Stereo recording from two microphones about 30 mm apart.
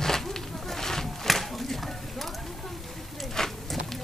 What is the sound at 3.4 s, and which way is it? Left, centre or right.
Clip-clop, centre.